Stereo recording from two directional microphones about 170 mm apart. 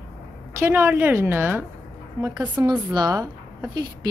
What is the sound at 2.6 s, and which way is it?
A woman's voice, 25° right (ahead or behind).